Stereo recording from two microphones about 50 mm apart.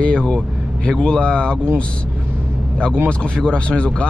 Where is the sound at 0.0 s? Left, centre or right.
Centre.